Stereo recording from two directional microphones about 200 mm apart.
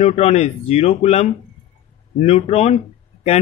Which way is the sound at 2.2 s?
30° left (ahead or behind).